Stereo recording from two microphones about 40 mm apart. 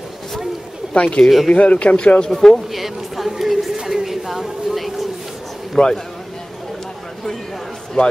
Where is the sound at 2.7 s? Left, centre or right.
Centre.